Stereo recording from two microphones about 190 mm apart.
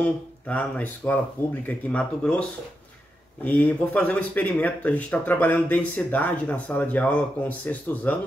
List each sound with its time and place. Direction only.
0.0 s speech: 10° left (ahead or behind)
3.4 s speech: 5° left (ahead or behind)